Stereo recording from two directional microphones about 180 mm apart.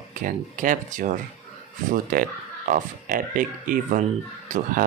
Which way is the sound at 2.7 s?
50° right (ahead or behind).